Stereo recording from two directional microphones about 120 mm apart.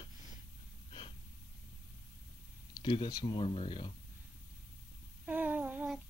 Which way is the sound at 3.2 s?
45° left (ahead or behind).